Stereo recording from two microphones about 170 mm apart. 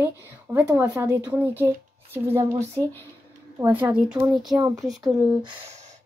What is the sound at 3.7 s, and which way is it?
Speech, 10° right (ahead or behind).